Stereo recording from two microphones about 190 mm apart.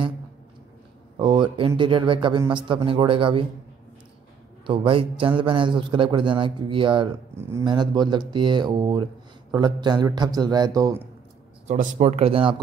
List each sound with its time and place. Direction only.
1.1 s a man's voice: 25° right (ahead or behind)
4.6 s a man's voice: 25° right (ahead or behind)
7.3 s a man's voice: 15° right (ahead or behind)
11.6 s speech: 40° right (ahead or behind)